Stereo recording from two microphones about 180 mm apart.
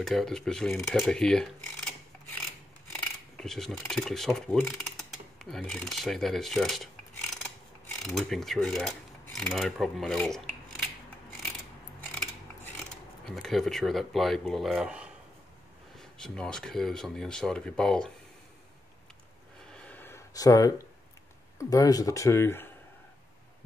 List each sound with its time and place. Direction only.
0.0 s speech: centre (ahead or behind)
5.4 s rub: centre (ahead or behind)
7.8 s mechanisms: centre (ahead or behind)
12.7 s speech: centre (ahead or behind)
19.7 s a sound: 5° left (ahead or behind)
21.5 s speech: 20° left (ahead or behind)